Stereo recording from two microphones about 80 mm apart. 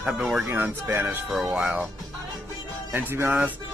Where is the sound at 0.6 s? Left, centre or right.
Right.